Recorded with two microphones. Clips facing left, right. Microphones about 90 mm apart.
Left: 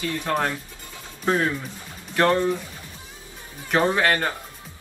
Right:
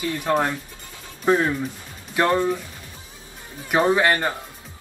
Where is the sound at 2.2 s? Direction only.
15° right (ahead or behind).